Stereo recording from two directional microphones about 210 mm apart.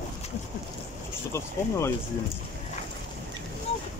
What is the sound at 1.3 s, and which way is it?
Speech, 15° left (ahead or behind).